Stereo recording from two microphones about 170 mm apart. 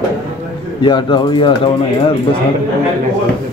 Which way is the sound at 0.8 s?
25° left (ahead or behind).